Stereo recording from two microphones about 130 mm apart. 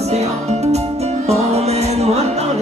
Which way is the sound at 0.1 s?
55° right (ahead or behind).